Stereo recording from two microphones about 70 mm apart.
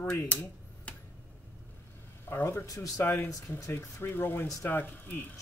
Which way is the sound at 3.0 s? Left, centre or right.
Left.